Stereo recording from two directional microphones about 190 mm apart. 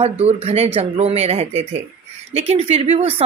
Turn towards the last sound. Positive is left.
turn(degrees=-30)  # may be behind; listen again after turning